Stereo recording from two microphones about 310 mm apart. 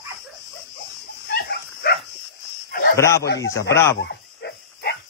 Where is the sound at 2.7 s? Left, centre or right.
Left.